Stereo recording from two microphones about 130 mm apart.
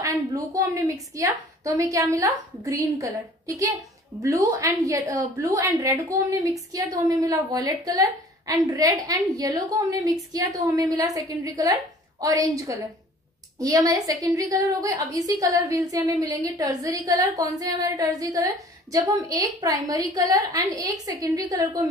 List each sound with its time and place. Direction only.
0.0 s a woman's voice: 25° right (ahead or behind)